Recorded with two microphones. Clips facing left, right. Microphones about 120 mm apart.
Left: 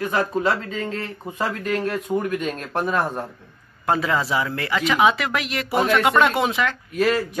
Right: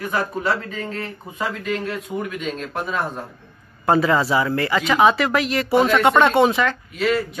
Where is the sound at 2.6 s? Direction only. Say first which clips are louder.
Left 2 dB; 60° left (ahead or behind).